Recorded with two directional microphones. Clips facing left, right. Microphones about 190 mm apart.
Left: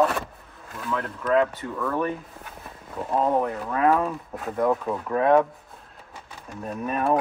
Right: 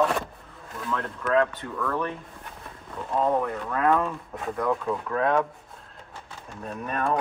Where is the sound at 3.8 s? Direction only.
10° left (ahead or behind).